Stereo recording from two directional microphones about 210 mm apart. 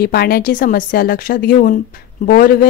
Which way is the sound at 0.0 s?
45° left (ahead or behind).